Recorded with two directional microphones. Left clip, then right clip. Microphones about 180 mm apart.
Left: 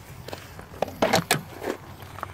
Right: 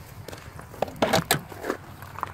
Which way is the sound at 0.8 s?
Centre (ahead or behind).